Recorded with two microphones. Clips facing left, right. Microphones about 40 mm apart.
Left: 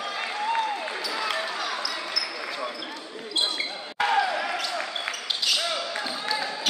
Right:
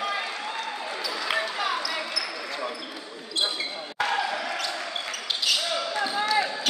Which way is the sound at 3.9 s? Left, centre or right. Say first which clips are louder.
Left 3 dB; centre.